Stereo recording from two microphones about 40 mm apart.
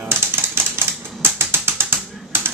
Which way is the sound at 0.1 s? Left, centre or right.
Right.